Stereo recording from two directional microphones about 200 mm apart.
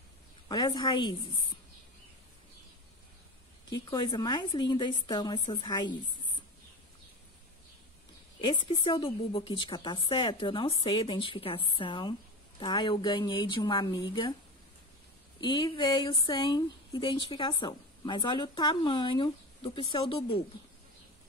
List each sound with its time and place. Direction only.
0.5 s a woman's voice: 20° left (ahead or behind)
3.7 s a woman's voice: 20° left (ahead or behind)
8.5 s a woman's voice: 25° left (ahead or behind)
15.4 s a woman's voice: 25° left (ahead or behind)